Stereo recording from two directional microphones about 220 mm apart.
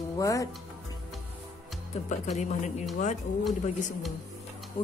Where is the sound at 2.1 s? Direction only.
35° left (ahead or behind).